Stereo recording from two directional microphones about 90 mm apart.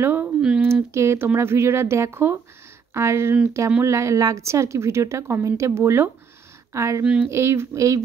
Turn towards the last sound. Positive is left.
turn(degrees=-35)  # may be behind; listen again after turning